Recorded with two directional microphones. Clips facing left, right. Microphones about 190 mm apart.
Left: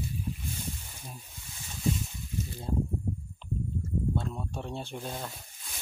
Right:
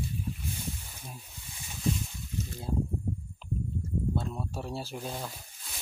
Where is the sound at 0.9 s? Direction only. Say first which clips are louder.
Even; centre (ahead or behind).